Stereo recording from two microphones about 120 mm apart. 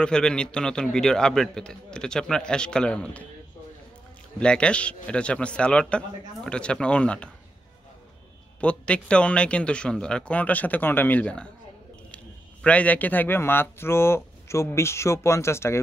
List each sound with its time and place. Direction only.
0.0 s a man's voice: 5° left (ahead or behind)
4.4 s a man's voice: 10° left (ahead or behind)
8.5 s a man's voice: 10° left (ahead or behind)
12.6 s speech: 10° left (ahead or behind)